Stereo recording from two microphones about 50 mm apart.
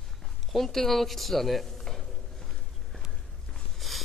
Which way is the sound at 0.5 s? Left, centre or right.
Centre.